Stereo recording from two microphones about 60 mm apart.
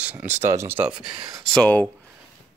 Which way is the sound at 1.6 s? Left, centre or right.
Left.